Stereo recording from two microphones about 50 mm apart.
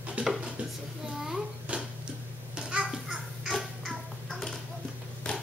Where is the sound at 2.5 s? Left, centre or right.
Centre.